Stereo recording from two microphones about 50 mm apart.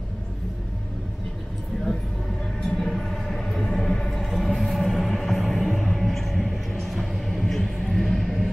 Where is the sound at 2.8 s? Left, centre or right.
Centre.